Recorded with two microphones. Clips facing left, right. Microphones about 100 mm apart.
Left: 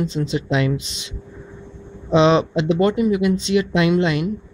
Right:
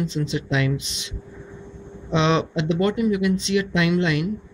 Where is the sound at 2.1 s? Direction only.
35° left (ahead or behind).